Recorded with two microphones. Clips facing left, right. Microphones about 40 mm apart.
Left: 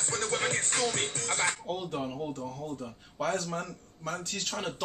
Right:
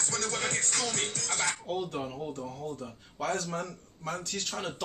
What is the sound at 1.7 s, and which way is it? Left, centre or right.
Speech, centre.